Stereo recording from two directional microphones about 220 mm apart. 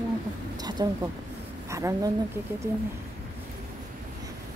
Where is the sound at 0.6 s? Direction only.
20° right (ahead or behind).